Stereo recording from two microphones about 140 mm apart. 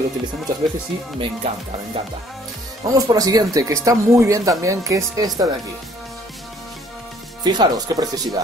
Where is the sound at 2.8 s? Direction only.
25° right (ahead or behind).